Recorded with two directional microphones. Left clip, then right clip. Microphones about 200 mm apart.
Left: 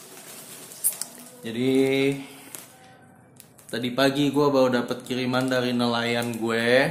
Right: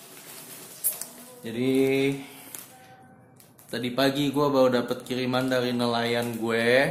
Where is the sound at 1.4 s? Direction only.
Centre (ahead or behind).